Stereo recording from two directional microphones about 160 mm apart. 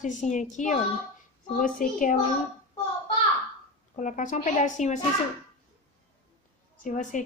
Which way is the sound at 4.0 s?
50° left (ahead or behind).